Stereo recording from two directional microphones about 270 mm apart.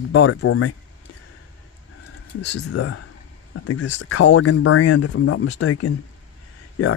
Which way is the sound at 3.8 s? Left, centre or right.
Left.